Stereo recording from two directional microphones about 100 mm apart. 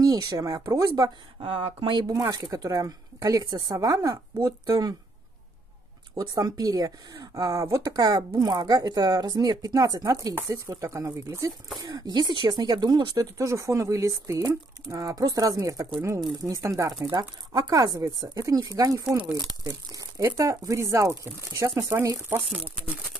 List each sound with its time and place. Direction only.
0.0 s speech: 35° right (ahead or behind)
1.4 s speech: 80° right; by 4.9 s 40° right (ahead or behind)
6.1 s speech: 40° right (ahead or behind)
11.8 s speech: 45° right (ahead or behind); by 22.4 s 25° right (ahead or behind)